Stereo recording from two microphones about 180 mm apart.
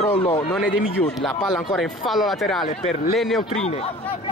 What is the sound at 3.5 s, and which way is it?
Speech, 35° left (ahead or behind).